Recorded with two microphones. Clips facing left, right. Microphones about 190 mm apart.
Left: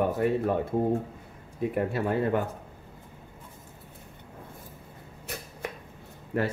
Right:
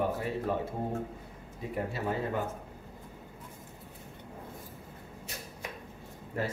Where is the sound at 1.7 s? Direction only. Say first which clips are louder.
Left 5 dB; 60° left (ahead or behind).